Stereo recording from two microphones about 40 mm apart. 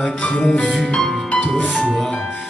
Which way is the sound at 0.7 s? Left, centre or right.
Centre.